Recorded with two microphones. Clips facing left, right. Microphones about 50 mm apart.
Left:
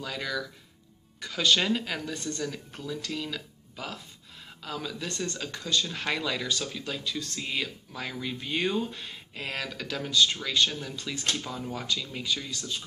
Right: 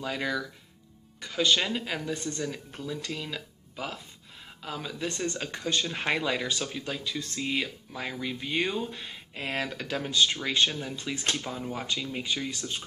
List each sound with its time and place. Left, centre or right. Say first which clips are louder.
0.0 s speech: right 2 dB; centre
1.2 s speech: even; centre; by 12.8 s right